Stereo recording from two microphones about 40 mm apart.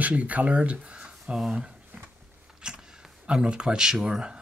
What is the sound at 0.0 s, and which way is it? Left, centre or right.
Speech, right.